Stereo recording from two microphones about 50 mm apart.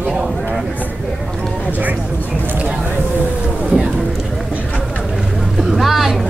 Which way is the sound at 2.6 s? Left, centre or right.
Centre.